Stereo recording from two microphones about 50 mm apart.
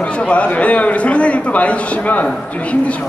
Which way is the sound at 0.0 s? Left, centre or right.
Left.